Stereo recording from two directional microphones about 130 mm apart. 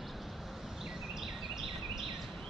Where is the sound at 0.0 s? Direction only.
Centre (ahead or behind).